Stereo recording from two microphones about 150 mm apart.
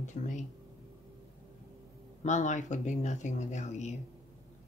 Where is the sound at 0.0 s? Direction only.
55° left (ahead or behind).